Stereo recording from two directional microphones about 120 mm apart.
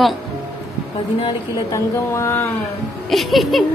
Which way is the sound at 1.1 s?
45° left (ahead or behind).